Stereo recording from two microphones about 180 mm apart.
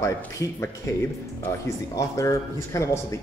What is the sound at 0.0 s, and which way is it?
Speech, 15° left (ahead or behind).